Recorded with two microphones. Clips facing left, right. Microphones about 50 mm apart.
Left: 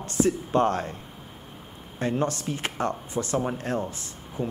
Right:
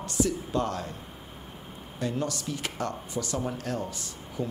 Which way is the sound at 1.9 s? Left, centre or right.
Left.